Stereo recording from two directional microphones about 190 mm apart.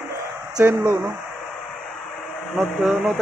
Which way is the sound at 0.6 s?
10° right (ahead or behind).